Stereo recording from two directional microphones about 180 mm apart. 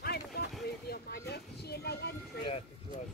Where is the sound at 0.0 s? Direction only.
60° left (ahead or behind).